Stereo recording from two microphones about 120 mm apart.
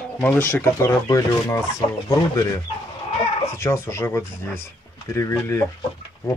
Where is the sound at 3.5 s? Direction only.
20° left (ahead or behind).